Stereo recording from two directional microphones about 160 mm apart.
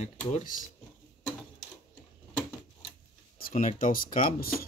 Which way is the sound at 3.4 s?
55° left (ahead or behind).